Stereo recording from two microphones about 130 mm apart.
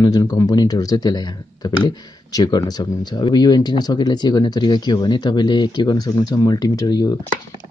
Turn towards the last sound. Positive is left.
turn(degrees=30)  # may be behind; listen again after turning